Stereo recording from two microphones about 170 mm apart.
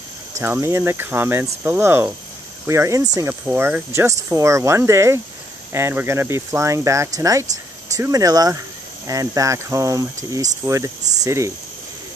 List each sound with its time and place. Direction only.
0.4 s speech: 15° right (ahead or behind)